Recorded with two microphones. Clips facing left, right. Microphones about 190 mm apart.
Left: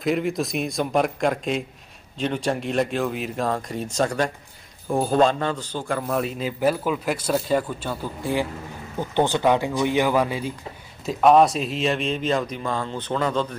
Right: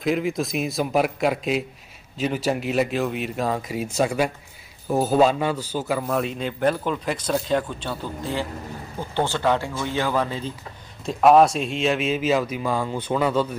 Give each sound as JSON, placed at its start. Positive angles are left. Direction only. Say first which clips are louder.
{"t": 0.0, "sound": "a man's voice", "louder": "even", "side_deg": 0}
{"t": 11.1, "sound": "a man's voice", "louder": "right 1 dB", "side_deg": 0}